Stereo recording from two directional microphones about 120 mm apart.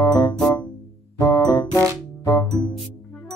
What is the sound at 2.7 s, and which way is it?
Music, 10° left (ahead or behind).